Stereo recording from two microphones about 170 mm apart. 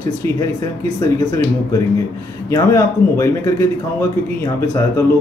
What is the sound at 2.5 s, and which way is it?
Speech, 15° left (ahead or behind).